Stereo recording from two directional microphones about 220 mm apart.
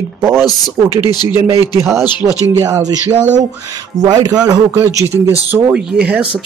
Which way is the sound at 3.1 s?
30° right (ahead or behind).